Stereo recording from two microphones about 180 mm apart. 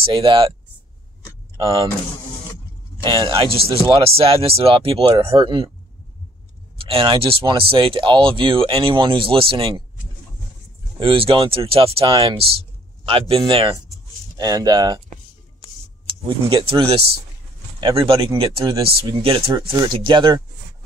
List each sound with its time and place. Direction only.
0.0 s speech: 30° right (ahead or behind)
1.6 s speech: 30° right (ahead or behind)
3.0 s speech: 25° right (ahead or behind)
6.8 s speech: 30° right (ahead or behind)
11.0 s speech: 30° right (ahead or behind)
16.3 s speech: 30° right (ahead or behind)